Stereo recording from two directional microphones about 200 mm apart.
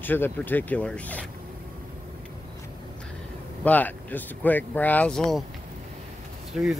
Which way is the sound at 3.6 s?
10° left (ahead or behind).